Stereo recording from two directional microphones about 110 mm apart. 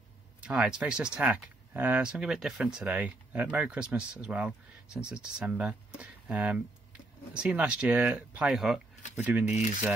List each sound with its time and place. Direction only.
0.4 s speech: 10° right (ahead or behind)
9.1 s speech: 15° right (ahead or behind)
9.5 s speech: 90° left